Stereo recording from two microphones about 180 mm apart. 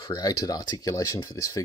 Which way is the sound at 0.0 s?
20° left (ahead or behind).